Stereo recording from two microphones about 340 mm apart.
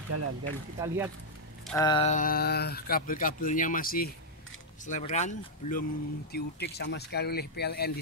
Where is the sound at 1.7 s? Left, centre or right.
Centre.